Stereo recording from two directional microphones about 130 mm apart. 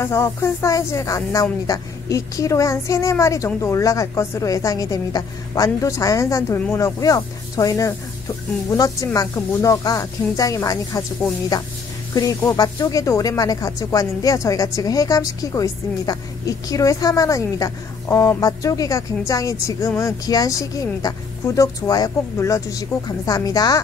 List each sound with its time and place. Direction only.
0.0 s speech: 20° left (ahead or behind)